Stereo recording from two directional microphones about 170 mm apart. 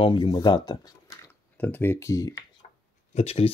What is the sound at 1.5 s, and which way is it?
Speech, 10° left (ahead or behind).